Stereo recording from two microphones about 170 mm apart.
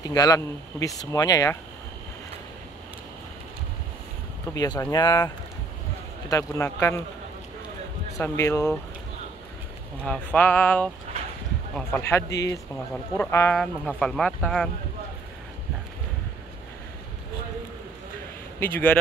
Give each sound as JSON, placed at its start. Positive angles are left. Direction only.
{"t": 0.1, "sound": "speech", "side_deg": 20}
{"t": 4.6, "sound": "speech", "side_deg": 20}
{"t": 8.2, "sound": "speech", "side_deg": 15}
{"t": 10.0, "sound": "speech", "side_deg": 5}
{"t": 12.7, "sound": "speech", "side_deg": 5}
{"t": 13.3, "sound": "speech", "side_deg": 15}
{"t": 13.6, "sound": "speech", "side_deg": 5}